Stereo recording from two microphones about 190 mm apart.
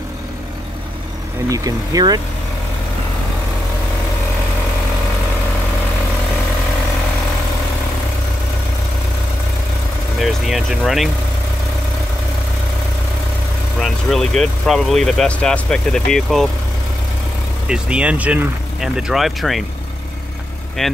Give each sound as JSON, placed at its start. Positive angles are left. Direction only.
{"t": 1.5, "sound": "speech", "side_deg": -20}
{"t": 10.2, "sound": "speech", "side_deg": 0}
{"t": 13.7, "sound": "speech", "side_deg": 0}
{"t": 17.6, "sound": "speech", "side_deg": -5}
{"t": 20.8, "sound": "speech", "side_deg": 0}